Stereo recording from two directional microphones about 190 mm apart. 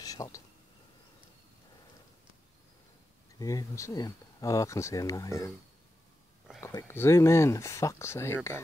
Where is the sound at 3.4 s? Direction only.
15° left (ahead or behind).